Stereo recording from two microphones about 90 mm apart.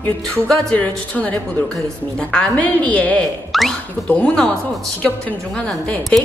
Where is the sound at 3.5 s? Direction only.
Centre (ahead or behind).